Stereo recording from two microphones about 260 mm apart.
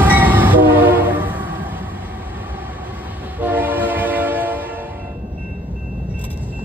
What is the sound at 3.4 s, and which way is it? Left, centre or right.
Train, centre.